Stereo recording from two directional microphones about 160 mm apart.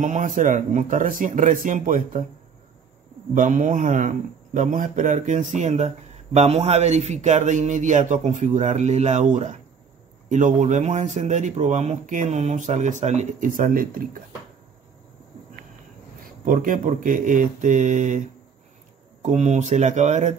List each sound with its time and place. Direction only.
0.0 s speech: 50° right (ahead or behind)
3.3 s speech: 55° right (ahead or behind)
16.4 s speech: 60° right (ahead or behind)